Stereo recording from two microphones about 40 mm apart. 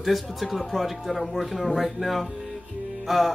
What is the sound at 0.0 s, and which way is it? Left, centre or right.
Speech, centre.